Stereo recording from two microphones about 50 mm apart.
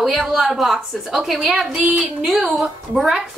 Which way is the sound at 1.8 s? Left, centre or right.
Right.